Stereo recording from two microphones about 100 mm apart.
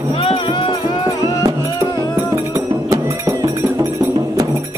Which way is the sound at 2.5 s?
35° right (ahead or behind).